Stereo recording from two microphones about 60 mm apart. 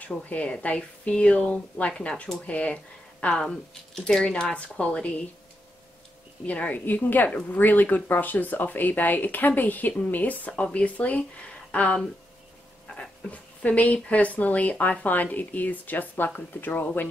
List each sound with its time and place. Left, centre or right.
0.2 s speech: left
6.4 s speech: left